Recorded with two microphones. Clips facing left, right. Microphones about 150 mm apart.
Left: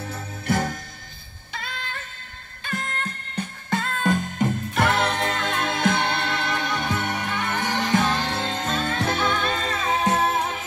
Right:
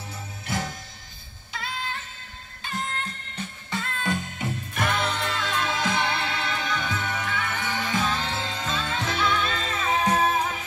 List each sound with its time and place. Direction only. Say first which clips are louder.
0.0 s jingle bell: left 6 dB; 55° left (ahead or behind)
1.5 s music: right 1 dB; 50° left (ahead or behind)
8.0 s music: left 4 dB; 70° left (ahead or behind)
8.3 s music: left 4 dB; 50° left (ahead or behind)